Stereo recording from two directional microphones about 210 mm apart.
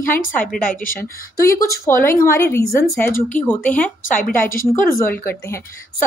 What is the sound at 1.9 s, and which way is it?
A woman's voice, 10° left (ahead or behind).